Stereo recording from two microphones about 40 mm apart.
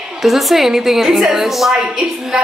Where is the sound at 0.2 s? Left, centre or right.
Centre.